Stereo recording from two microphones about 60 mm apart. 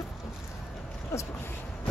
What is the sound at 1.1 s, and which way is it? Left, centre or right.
Speech, left.